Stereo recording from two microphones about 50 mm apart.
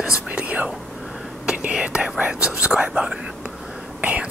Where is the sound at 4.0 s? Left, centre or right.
Right.